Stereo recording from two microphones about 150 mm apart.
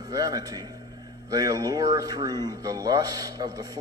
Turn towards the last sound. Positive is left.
turn(degrees=-25)  # may be behind; listen again after turning